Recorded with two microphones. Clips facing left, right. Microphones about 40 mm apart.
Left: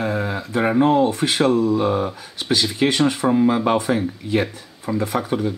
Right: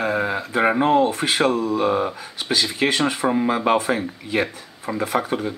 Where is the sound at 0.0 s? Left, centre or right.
Centre.